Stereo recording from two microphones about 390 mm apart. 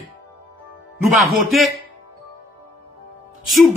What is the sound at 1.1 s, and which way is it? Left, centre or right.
Speech, centre.